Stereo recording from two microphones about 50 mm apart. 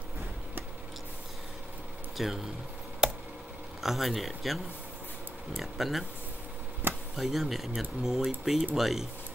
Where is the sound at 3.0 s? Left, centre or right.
Centre.